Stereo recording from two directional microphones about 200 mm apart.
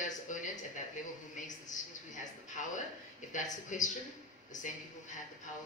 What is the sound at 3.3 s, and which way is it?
Speech, 40° left (ahead or behind).